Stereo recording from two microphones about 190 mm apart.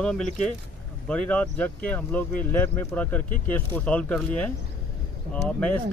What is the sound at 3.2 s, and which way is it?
Speech, 45° left (ahead or behind).